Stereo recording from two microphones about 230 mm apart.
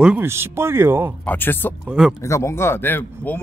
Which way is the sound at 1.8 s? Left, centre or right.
Centre.